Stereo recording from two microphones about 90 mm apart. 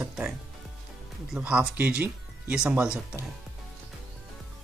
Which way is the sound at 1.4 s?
10° right (ahead or behind).